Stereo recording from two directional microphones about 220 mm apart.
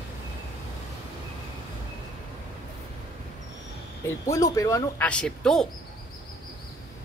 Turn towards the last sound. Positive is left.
turn(degrees=5)  # may be behind; listen again after turning